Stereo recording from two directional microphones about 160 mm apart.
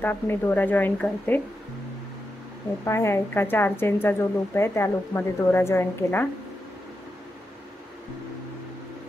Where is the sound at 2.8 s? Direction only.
15° left (ahead or behind).